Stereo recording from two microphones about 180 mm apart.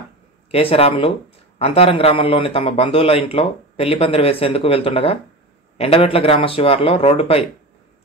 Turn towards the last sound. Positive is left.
turn(degrees=30)  # may be behind; listen again after turning